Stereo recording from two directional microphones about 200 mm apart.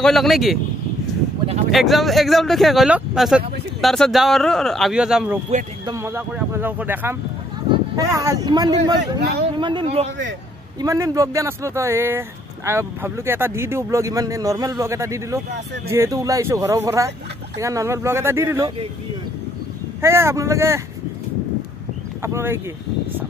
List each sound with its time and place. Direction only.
0.0 s speech: centre (ahead or behind)
1.7 s speech: centre (ahead or behind)
5.9 s speech: 15° right (ahead or behind); by 10.1 s 30° right (ahead or behind)
10.8 s speech: 15° right (ahead or behind)
20.0 s speech: 10° right (ahead or behind)
22.2 s speech: 10° right (ahead or behind)